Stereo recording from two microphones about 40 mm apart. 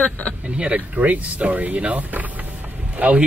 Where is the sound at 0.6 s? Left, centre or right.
Right.